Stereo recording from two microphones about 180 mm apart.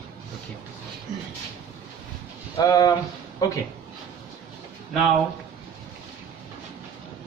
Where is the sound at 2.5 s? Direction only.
20° left (ahead or behind).